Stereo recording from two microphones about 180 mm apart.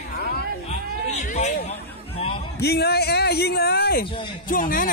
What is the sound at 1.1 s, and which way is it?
Music, 40° left (ahead or behind).